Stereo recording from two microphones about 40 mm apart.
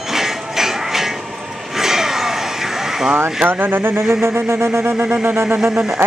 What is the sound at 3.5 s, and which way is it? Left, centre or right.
Speech, right.